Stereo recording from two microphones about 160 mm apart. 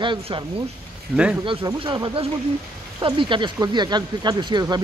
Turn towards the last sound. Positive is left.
turn(degrees=-25)  # may be behind; listen again after turning